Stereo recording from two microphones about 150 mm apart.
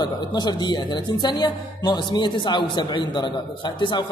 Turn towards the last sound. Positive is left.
turn(degrees=30)  # may be behind; listen again after turning